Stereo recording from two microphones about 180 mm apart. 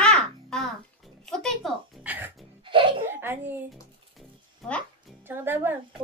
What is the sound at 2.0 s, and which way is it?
Speech, 10° right (ahead or behind).